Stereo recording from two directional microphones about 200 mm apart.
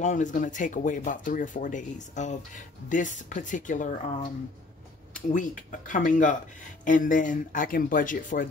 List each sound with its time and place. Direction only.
0.0 s speech: 40° left (ahead or behind)
5.3 s speech: 40° left (ahead or behind)